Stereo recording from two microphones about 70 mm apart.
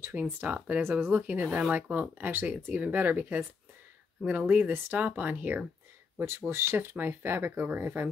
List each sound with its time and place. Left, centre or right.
0.1 s speech: right
6.1 s speech: right